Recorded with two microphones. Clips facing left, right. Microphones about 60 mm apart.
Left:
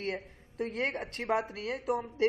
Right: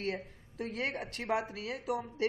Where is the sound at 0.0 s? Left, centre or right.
Left.